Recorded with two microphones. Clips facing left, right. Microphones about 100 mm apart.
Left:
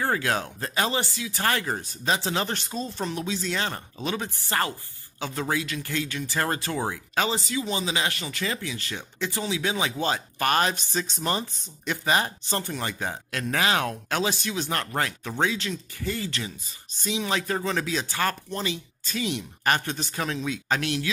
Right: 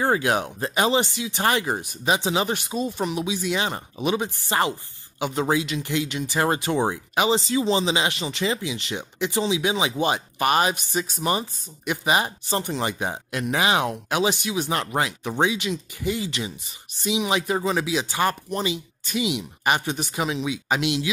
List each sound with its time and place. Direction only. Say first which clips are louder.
0.0 s speech: right 4 dB; 20° right (ahead or behind)